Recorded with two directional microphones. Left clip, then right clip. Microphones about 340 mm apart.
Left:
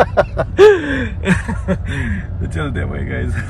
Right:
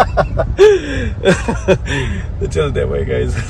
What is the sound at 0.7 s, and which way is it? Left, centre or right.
Speech, centre.